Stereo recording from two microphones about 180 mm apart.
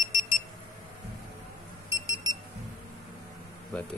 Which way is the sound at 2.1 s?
20° left (ahead or behind).